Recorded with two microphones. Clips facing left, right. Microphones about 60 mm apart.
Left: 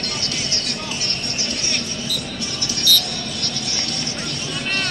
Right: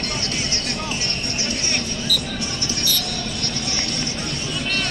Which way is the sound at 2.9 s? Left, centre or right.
Right.